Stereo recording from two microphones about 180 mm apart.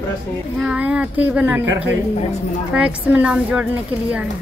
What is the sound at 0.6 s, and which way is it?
Speech, 5° right (ahead or behind).